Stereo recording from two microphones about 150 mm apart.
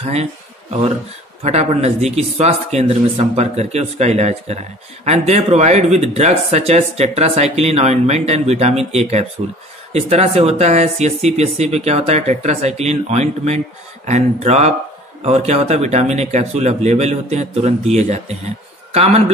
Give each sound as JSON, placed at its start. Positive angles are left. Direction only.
{"t": 0.0, "sound": "speech", "side_deg": -45}
{"t": 1.4, "sound": "a man's voice", "side_deg": -45}